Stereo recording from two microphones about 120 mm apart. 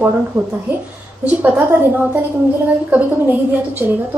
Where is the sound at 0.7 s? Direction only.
15° right (ahead or behind).